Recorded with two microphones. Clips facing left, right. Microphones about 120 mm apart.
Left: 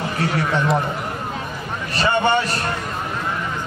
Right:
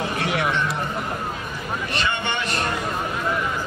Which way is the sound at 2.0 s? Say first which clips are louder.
Left 10 dB; 35° left (ahead or behind).